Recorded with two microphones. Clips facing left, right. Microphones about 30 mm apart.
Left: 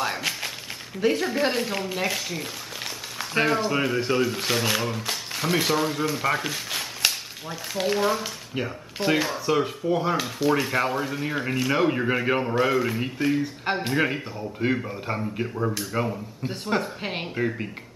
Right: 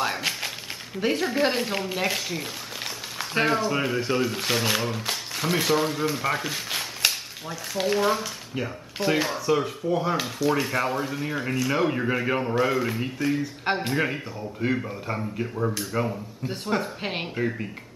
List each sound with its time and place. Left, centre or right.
0.0 s a sound: centre
0.9 s speech: centre
8.5 s speech: centre
17.4 s speech: centre